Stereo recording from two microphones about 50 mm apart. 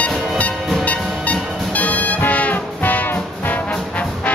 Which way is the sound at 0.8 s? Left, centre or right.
Left.